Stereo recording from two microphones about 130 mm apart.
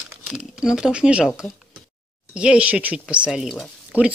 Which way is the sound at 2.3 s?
10° right (ahead or behind).